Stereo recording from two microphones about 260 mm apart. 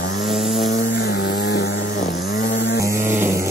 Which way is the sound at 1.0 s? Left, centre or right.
Left.